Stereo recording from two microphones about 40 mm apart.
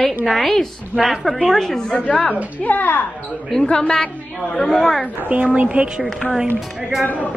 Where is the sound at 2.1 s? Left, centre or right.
Left.